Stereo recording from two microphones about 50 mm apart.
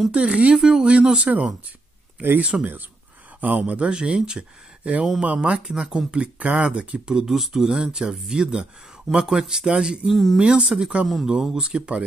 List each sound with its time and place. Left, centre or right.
0.1 s speech: right
2.5 s speech: centre
3.3 s speech: right
5.7 s speech: centre
6.1 s speech: right
7.2 s speech: centre
10.0 s speech: centre
10.4 s speech: centre